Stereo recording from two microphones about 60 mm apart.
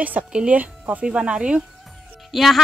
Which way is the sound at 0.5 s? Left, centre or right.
Right.